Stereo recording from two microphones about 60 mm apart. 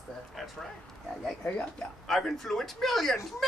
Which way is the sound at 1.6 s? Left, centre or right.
Centre.